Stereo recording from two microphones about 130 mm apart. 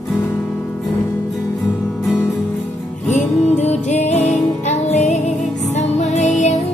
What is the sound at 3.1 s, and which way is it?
Music, 65° left (ahead or behind).